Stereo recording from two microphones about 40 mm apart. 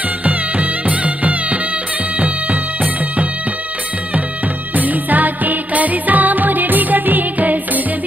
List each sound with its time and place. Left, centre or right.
0.2 s music: right
2.1 s bagpipes: right
4.7 s music: right